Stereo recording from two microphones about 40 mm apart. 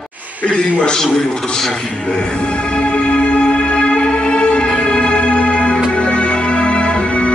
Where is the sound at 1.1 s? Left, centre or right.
Centre.